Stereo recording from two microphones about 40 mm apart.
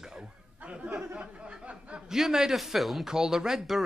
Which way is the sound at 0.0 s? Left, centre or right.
Centre.